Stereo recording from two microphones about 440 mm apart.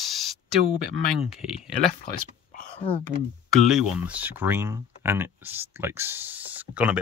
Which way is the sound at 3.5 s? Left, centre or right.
Centre.